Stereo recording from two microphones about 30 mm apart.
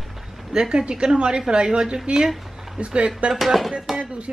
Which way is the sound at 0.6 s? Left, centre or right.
Right.